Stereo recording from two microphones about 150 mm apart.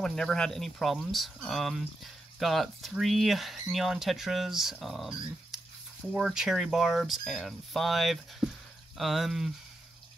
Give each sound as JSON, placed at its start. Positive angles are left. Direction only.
{"t": 0.0, "sound": "speech", "side_deg": 5}